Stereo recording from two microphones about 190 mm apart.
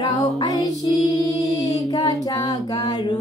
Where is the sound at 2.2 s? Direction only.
20° left (ahead or behind).